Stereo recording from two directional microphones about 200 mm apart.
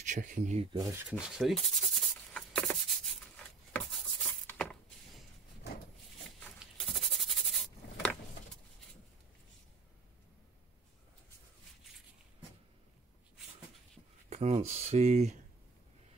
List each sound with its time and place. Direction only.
0.0 s speech: 40° right (ahead or behind)
0.9 s rub: 5° right (ahead or behind)
6.6 s a sound: 5° right (ahead or behind)
14.3 s speech: 35° right (ahead or behind)